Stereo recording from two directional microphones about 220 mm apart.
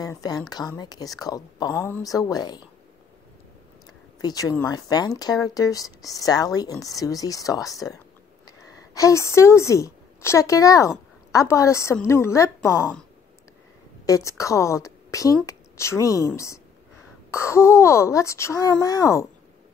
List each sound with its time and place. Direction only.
0.0 s speech: 15° left (ahead or behind)
4.2 s speech: 15° left (ahead or behind)
14.0 s a woman's voice: 15° left (ahead or behind)